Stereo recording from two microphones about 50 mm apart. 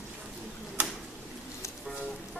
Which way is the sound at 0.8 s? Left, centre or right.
Right.